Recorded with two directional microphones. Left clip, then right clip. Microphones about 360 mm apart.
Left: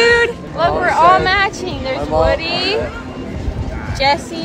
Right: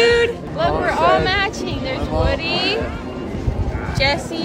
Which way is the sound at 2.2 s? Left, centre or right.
Centre.